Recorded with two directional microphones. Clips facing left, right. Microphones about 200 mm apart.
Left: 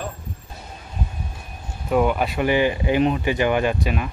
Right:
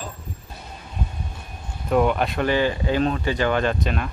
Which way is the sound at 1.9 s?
5° left (ahead or behind).